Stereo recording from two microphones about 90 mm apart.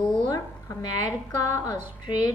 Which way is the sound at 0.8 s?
45° left (ahead or behind).